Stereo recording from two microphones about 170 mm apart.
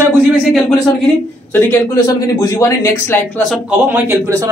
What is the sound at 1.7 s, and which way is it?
A man's voice, 20° left (ahead or behind).